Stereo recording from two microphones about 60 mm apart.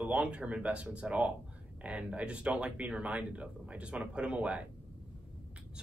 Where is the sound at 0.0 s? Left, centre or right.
Centre.